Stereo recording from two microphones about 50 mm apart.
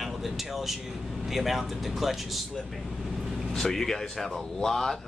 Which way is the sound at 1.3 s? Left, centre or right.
Centre.